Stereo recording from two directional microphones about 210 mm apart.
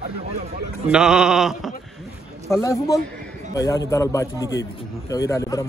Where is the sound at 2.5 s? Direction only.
15° left (ahead or behind).